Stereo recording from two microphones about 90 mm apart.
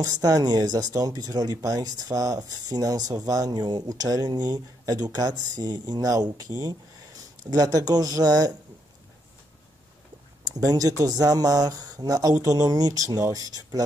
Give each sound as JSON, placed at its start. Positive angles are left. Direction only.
{"t": 0.0, "sound": "speech", "side_deg": -45}
{"t": 7.5, "sound": "speech", "side_deg": -45}
{"t": 10.4, "sound": "speech", "side_deg": -45}